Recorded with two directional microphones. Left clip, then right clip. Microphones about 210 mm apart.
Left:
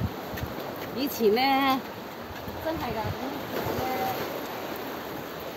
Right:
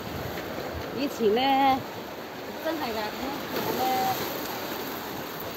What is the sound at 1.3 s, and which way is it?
Speech, 55° left (ahead or behind).